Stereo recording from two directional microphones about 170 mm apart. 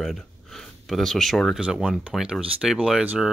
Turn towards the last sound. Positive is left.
turn(degrees=-5)  # may be behind; listen again after turning